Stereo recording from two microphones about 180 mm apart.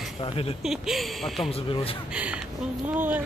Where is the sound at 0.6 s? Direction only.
Centre (ahead or behind).